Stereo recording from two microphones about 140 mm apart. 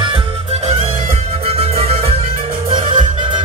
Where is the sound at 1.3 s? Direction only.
45° right (ahead or behind).